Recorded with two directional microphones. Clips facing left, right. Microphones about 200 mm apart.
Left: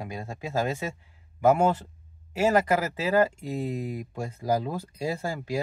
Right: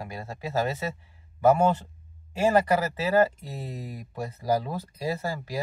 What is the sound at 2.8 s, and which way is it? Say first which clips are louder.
Speech: right 1 dB; 10° left (ahead or behind).